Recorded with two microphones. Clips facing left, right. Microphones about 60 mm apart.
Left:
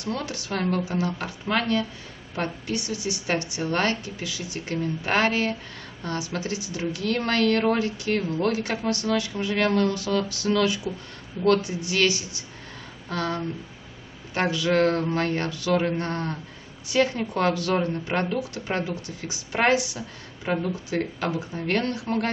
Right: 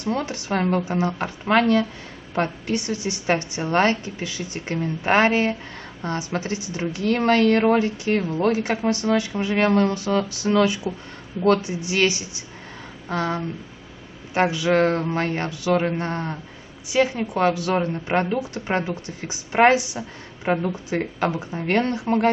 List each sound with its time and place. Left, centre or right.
0.0 s a woman's voice: right